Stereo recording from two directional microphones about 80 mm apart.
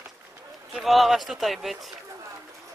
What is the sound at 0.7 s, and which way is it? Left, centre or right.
Speech, centre.